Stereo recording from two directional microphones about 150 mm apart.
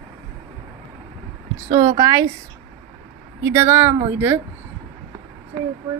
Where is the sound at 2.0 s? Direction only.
25° right (ahead or behind).